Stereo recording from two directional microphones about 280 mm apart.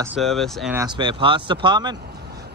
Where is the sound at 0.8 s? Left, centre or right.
Centre.